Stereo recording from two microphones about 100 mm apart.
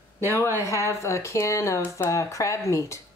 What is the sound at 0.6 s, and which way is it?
Speech, 30° left (ahead or behind).